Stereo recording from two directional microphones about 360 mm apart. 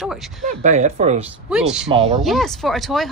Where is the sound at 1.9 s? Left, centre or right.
Centre.